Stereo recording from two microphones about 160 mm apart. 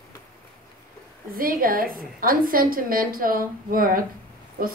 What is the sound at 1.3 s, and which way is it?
A woman's voice, 65° right (ahead or behind).